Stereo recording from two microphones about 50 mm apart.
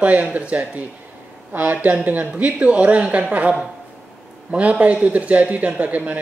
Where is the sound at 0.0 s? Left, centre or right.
Right.